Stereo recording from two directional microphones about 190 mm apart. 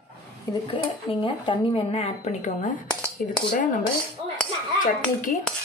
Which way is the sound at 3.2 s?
45° left (ahead or behind).